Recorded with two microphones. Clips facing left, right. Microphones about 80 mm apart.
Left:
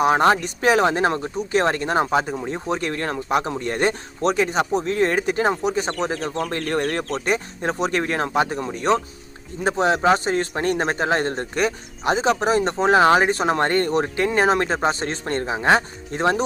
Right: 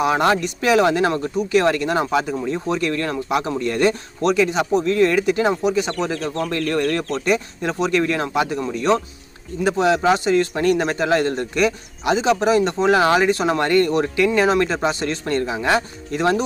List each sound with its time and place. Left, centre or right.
0.0 s a man's voice: left